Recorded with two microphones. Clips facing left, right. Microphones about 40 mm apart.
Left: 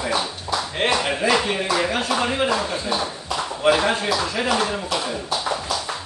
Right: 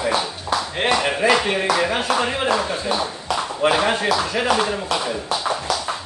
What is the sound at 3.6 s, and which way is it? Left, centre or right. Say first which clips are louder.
Speech: even; right.